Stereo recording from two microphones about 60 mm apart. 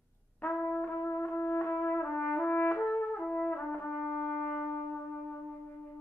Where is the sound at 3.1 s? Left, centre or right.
Left.